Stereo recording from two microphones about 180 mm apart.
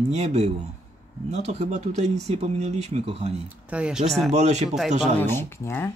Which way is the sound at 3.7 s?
5° right (ahead or behind).